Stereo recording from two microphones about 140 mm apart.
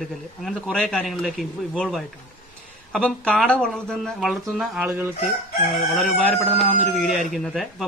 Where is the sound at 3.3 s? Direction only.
10° left (ahead or behind).